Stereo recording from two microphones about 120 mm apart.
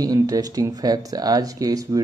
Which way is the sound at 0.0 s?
30° right (ahead or behind).